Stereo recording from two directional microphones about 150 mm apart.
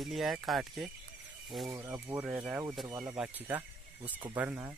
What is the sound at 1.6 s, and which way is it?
Speech, 20° right (ahead or behind).